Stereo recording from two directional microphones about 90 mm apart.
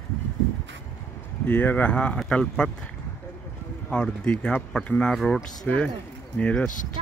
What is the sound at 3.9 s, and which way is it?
Speech, 10° left (ahead or behind).